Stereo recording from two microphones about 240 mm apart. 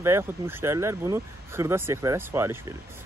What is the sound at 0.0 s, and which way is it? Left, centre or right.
Speech, centre.